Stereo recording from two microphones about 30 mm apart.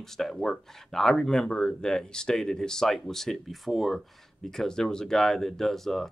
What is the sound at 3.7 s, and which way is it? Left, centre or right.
Speech, centre.